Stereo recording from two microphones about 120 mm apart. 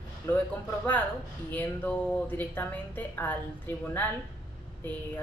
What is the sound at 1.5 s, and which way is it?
Speech, 15° left (ahead or behind).